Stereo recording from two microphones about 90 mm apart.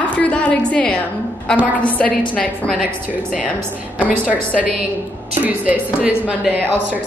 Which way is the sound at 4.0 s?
15° right (ahead or behind).